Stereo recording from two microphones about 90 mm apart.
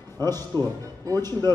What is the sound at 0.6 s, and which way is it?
Speech, 45° right (ahead or behind).